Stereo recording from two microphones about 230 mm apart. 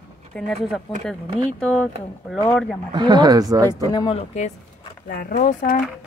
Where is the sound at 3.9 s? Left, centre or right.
Left.